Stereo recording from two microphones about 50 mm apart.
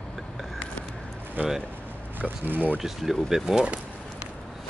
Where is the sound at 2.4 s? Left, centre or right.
Right.